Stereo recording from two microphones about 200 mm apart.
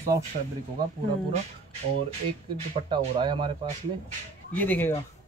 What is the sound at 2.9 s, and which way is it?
Speech, 20° right (ahead or behind).